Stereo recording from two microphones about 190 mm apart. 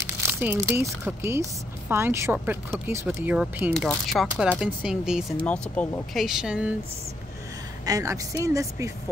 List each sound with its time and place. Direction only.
0.2 s speech: 10° right (ahead or behind)
5.5 s speech: 5° left (ahead or behind)
7.8 s speech: 15° right (ahead or behind)